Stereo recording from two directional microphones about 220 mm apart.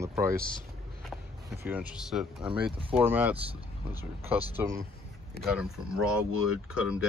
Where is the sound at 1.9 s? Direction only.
5° right (ahead or behind).